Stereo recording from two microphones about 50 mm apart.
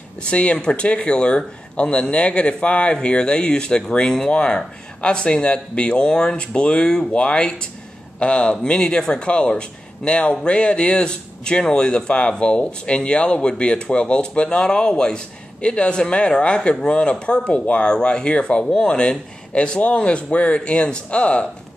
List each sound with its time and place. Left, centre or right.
0.2 s speech: left